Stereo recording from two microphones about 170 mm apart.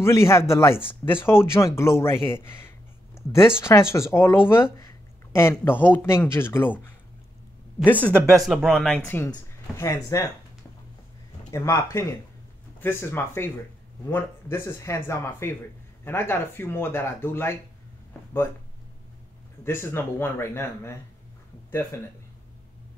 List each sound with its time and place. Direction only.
0.0 s speech: 15° left (ahead or behind)
7.8 s speech: 10° left (ahead or behind)
11.5 s speech: 15° left (ahead or behind)
19.6 s speech: 15° left (ahead or behind)